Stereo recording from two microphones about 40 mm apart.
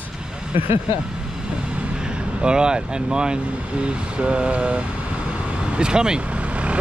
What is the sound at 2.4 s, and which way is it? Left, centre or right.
Speech, right.